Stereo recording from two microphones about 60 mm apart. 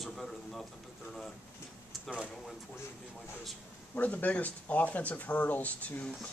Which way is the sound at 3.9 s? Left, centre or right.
Left.